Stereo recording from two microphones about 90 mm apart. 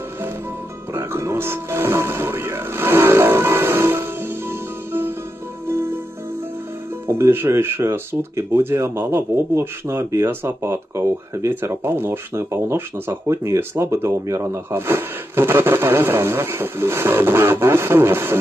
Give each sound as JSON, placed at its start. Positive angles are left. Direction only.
{"t": 0.9, "sound": "television", "side_deg": -30}
{"t": 5.7, "sound": "music", "side_deg": -25}
{"t": 7.1, "sound": "speech", "side_deg": -25}